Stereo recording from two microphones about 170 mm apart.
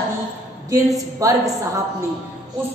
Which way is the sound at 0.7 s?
20° right (ahead or behind).